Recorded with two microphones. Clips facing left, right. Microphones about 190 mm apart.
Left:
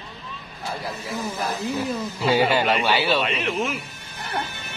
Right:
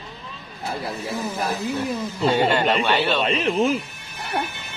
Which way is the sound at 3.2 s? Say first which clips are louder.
Right 5 dB; 35° right (ahead or behind).